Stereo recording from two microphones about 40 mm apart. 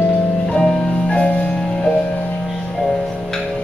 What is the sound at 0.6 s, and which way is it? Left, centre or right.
Music, centre.